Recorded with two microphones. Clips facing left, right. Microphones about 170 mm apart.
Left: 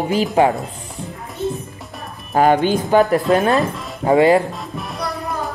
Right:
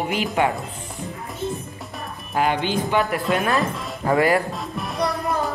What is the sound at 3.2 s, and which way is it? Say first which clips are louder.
Speech: left 6 dB; centre (ahead or behind).